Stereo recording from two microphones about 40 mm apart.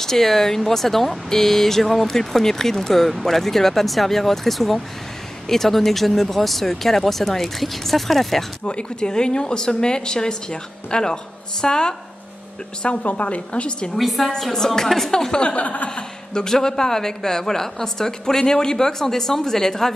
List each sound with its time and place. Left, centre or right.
0.0 s speech: centre
8.6 s speech: left
12.8 s a woman's voice: left
13.9 s speech: centre
15.4 s a woman's voice: left
15.9 s speech: centre